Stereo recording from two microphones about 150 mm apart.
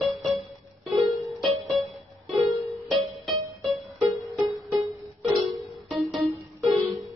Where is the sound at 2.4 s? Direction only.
20° right (ahead or behind).